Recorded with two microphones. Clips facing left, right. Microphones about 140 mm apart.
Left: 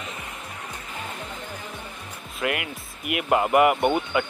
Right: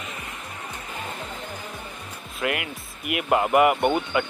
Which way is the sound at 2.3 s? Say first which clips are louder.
Even; centre (ahead or behind).